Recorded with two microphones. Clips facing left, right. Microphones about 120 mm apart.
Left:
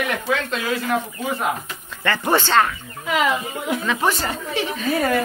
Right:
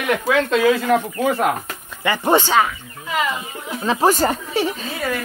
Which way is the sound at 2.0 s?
15° right (ahead or behind).